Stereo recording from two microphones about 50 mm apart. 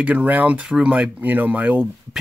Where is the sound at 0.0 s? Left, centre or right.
Right.